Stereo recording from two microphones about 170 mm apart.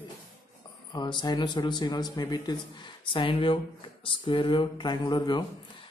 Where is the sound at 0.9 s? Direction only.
25° left (ahead or behind).